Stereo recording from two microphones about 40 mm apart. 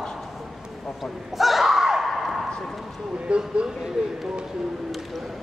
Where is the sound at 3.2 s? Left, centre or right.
Right.